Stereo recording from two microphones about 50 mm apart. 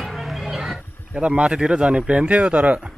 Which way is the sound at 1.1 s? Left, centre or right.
Right.